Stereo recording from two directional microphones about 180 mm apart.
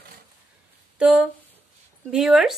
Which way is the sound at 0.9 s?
5° right (ahead or behind).